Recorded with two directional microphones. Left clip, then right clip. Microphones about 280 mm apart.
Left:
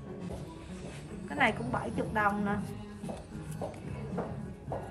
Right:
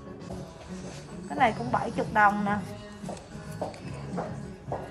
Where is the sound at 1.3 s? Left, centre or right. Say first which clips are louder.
Right 4 dB; centre.